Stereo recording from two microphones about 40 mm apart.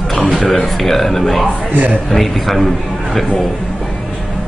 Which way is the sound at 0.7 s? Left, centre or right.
Centre.